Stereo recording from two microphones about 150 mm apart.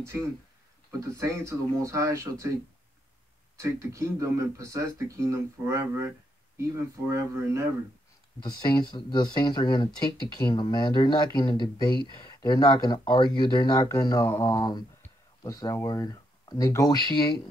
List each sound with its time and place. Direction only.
0.9 s speech: 20° right (ahead or behind)
3.5 s speech: 20° right (ahead or behind)
8.4 s speech: 30° left (ahead or behind)